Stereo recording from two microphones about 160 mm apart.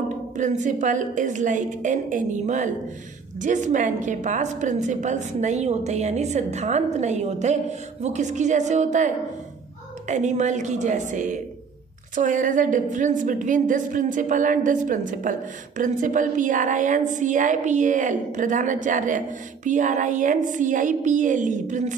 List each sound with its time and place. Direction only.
0.4 s a woman's voice: 50° right (ahead or behind)